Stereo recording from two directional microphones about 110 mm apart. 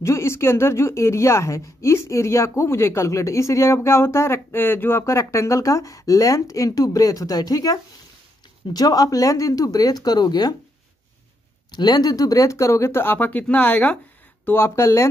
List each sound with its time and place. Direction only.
0.0 s speech: 25° left (ahead or behind)
11.7 s speech: 40° left (ahead or behind)